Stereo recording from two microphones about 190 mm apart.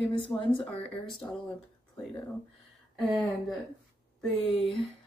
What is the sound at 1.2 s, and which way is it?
Speech, 10° left (ahead or behind).